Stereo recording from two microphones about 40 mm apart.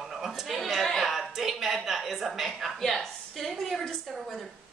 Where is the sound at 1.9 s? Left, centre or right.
Centre.